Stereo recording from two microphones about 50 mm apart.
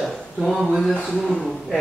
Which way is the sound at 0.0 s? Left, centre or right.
Centre.